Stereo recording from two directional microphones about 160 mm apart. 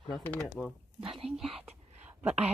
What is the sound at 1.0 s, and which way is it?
Speech, 35° right (ahead or behind).